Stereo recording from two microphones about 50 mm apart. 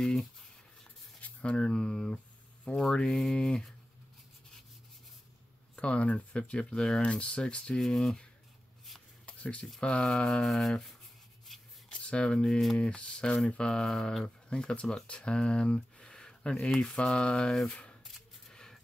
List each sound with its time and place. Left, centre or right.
0.0 s speech: centre
1.2 s speech: left
5.8 s speech: left
7.8 s speech: centre
9.2 s a sound: left
9.8 s speech: centre
11.9 s speech: left
18.5 s a sound: centre